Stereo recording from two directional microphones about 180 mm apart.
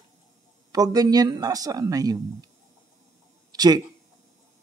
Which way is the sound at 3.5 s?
20° right (ahead or behind).